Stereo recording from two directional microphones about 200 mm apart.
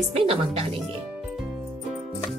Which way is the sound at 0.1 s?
30° right (ahead or behind).